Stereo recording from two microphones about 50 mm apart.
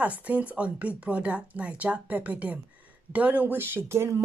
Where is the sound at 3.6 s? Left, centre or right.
Right.